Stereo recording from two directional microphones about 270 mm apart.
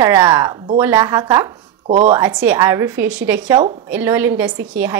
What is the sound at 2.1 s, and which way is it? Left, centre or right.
A woman's voice, centre.